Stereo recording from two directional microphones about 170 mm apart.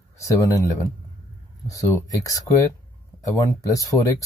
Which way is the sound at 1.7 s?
20° left (ahead or behind).